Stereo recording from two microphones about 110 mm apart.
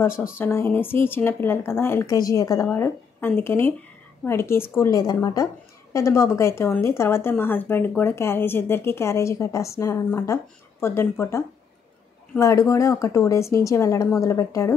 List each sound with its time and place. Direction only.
0.4 s speech: 20° left (ahead or behind)
2.0 s speech: 35° left (ahead or behind)